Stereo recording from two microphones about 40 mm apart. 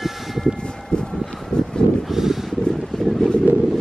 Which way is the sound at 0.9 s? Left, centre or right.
Left.